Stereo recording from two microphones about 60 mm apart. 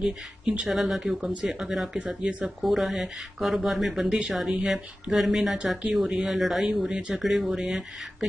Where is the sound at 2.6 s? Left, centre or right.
Centre.